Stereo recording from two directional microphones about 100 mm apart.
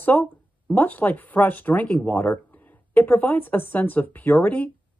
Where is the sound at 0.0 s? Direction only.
15° left (ahead or behind).